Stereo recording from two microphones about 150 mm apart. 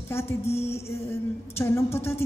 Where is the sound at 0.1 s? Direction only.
15° left (ahead or behind).